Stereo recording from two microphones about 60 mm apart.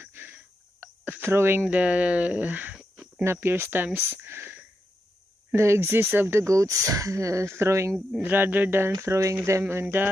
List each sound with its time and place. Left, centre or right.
0.0 s cricket: right
1.7 s speech: right
3.3 s speech: right
6.5 s speech: right
8.2 s speech: right
9.0 s speech: right